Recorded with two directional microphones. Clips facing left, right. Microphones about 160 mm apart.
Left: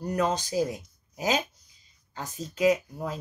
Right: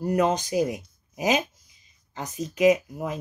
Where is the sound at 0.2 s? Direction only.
15° right (ahead or behind).